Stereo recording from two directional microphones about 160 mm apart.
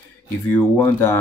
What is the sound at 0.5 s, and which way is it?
Speech, 15° left (ahead or behind).